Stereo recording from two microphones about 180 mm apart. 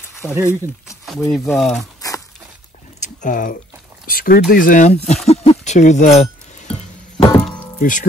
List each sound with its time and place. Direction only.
0.2 s speech: 15° left (ahead or behind)
1.3 s speech: centre (ahead or behind)
2.0 s a sound: 20° left (ahead or behind)
3.0 s a sound: 45° left (ahead or behind)
4.0 s speech: 55° left (ahead or behind); by 7.2 s 40° left (ahead or behind)
7.3 s music: 5° left (ahead or behind)
7.8 s speech: 45° left (ahead or behind)